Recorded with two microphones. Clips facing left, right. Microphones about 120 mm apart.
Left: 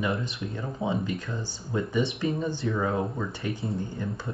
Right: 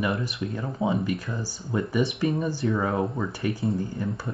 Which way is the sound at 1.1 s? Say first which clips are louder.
Right 2 dB; 10° right (ahead or behind).